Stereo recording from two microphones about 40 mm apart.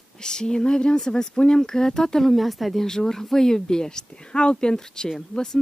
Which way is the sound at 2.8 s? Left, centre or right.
Centre.